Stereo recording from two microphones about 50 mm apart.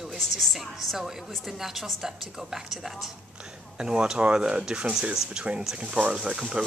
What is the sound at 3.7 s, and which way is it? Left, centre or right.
Speech, centre.